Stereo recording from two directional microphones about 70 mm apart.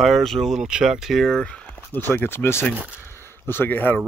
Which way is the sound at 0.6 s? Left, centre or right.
Centre.